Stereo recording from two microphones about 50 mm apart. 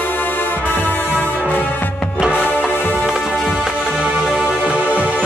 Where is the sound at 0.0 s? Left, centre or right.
Left.